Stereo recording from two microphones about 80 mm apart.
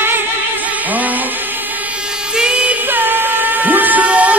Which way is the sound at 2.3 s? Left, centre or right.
Centre.